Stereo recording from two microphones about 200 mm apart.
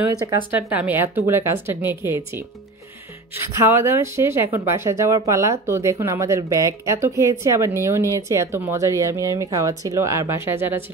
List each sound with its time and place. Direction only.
0.1 s speech: 10° right (ahead or behind)
3.6 s speech: 10° right (ahead or behind)